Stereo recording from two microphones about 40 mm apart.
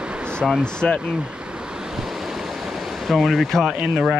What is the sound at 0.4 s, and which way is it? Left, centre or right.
Speech, centre.